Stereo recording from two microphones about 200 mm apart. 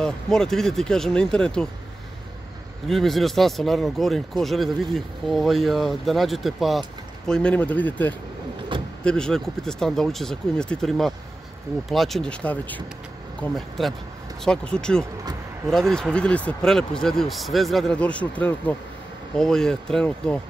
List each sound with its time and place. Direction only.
0.0 s speech: 5° left (ahead or behind)
2.9 s speech: centre (ahead or behind)
8.7 s vehicle: 25° right (ahead or behind)
9.0 s speech: 5° left (ahead or behind)